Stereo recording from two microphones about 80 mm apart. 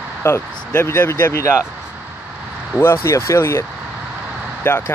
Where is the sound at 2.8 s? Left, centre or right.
Left.